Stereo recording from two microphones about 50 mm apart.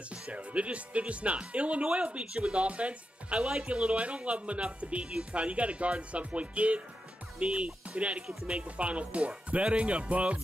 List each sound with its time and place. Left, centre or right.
0.1 s speech: right